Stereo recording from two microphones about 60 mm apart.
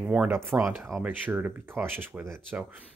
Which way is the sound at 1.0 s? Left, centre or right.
Right.